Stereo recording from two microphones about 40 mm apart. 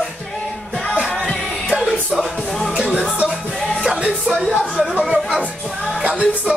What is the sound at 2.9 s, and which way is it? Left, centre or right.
Music, right.